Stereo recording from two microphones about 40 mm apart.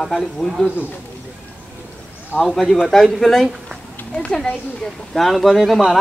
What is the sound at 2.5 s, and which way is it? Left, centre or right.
Speech, centre.